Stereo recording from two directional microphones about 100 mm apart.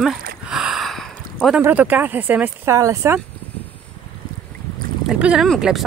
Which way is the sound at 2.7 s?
30° right (ahead or behind).